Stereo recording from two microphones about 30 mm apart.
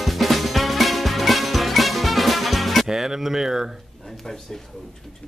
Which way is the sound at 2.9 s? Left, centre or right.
Centre.